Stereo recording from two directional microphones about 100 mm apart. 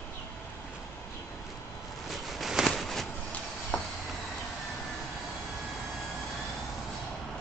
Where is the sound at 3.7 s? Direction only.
15° left (ahead or behind).